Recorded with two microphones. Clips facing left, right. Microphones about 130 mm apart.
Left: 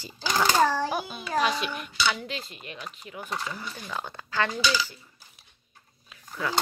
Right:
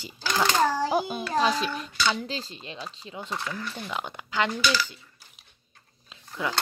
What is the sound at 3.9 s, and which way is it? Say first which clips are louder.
Speech: right 2 dB; 15° right (ahead or behind).